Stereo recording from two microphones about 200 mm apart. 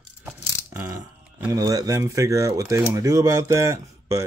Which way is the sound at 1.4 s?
15° right (ahead or behind).